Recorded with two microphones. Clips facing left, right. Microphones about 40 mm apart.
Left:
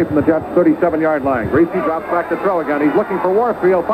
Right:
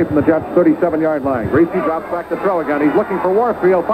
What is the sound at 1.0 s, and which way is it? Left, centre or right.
Speech, left.